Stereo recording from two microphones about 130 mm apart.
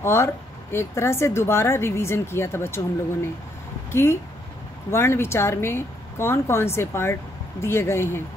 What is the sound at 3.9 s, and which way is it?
Speech, 20° left (ahead or behind).